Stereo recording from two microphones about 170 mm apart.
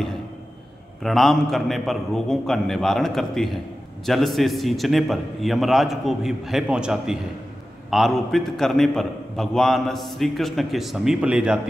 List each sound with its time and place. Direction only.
1.0 s a man's voice: centre (ahead or behind)